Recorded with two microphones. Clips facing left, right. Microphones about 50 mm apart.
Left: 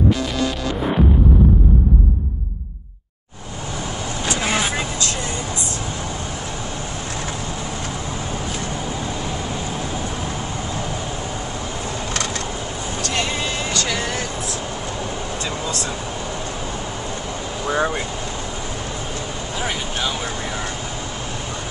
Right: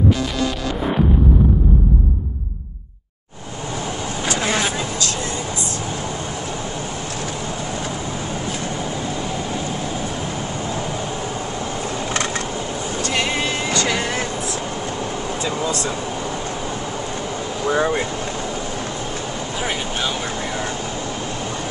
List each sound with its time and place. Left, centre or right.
4.4 s vehicle: centre
13.0 s vehicle: right
13.7 s music: centre
15.4 s a sound: centre
17.6 s vehicle: centre
19.6 s vehicle: centre